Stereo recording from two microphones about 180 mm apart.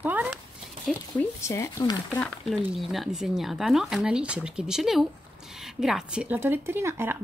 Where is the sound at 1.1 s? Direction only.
10° left (ahead or behind).